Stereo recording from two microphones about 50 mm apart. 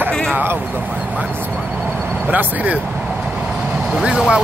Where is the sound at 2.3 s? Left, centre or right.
Right.